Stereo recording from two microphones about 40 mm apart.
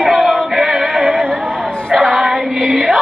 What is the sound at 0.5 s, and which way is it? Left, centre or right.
Synthetic singing, centre.